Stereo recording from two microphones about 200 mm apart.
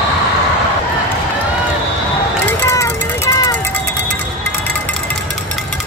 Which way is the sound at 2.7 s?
15° left (ahead or behind).